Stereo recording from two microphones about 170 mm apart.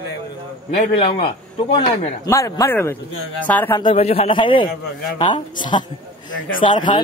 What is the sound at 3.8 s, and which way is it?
A man's voice, 35° left (ahead or behind).